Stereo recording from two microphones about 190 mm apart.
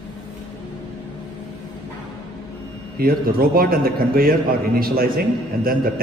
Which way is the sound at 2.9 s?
50° right (ahead or behind).